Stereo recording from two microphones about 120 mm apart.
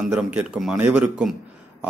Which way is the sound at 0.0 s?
10° right (ahead or behind).